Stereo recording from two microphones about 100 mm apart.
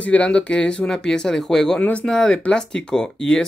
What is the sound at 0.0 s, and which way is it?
Speech, 15° left (ahead or behind).